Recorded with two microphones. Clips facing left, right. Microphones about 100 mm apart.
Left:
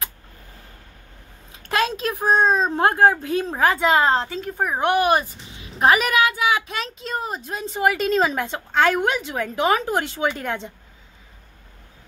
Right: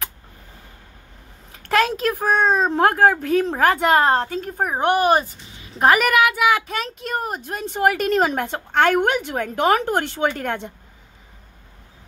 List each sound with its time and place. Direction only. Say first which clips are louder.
1.6 s a woman's voice: right 3 dB; 55° right (ahead or behind); by 5.2 s 35° right (ahead or behind)
5.6 s a woman's voice: right 1 dB; 45° right (ahead or behind); by 6.6 s 70° right (ahead or behind)
6.7 s a woman's voice: right 2 dB; 50° right (ahead or behind)